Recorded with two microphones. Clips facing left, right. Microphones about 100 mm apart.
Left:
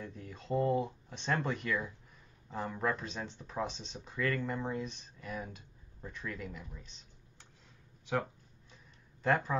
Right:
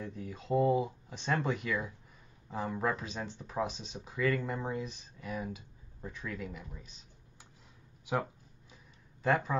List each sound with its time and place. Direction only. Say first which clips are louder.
0.0 s speech: right 4 dB; centre (ahead or behind)
8.0 s speech: right 1 dB; 10° right (ahead or behind)
9.2 s speech: right 1 dB; centre (ahead or behind)